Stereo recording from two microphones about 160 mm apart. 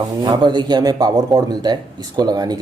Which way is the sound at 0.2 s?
25° right (ahead or behind).